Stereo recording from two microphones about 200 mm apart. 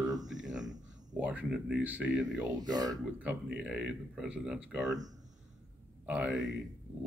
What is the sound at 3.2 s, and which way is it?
Speech, 5° right (ahead or behind).